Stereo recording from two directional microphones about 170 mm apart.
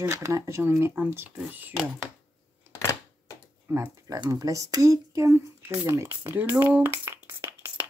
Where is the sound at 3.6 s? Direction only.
15° right (ahead or behind).